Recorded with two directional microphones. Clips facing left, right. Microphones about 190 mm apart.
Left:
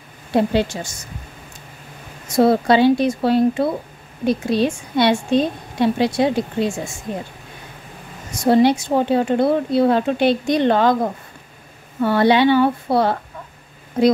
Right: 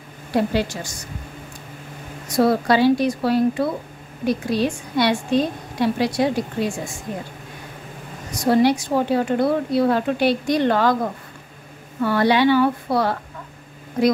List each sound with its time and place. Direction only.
0.3 s speech: 25° left (ahead or behind)
2.2 s speech: 25° left (ahead or behind)
8.3 s speech: 25° left (ahead or behind)